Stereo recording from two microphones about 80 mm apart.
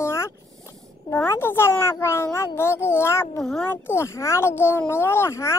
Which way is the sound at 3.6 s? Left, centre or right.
Left.